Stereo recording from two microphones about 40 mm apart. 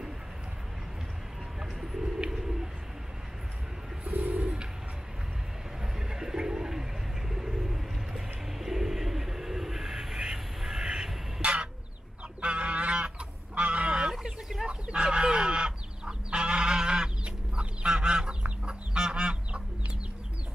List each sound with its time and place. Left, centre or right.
1.6 s bird: centre
4.1 s bird: right
4.4 s bird: right
5.9 s bird: centre
11.4 s a sound: right
12.4 s goose: right
13.6 s fowl: right
14.7 s chicken: right